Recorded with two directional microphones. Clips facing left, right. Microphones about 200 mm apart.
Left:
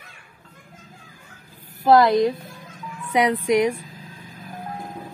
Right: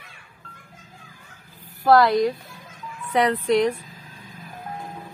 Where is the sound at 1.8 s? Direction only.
20° left (ahead or behind).